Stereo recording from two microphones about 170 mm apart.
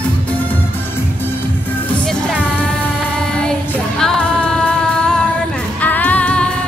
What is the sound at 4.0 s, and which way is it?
Music, 5° left (ahead or behind).